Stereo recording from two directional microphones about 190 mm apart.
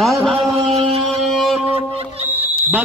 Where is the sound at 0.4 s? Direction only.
30° right (ahead or behind).